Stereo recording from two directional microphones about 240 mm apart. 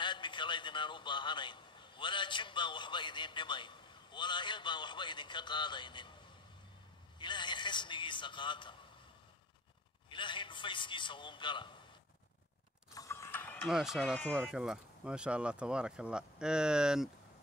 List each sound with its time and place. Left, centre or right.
0.0 s a man's voice: centre
7.2 s a man's voice: centre
10.0 s a man's voice: centre
12.9 s mechanisms: centre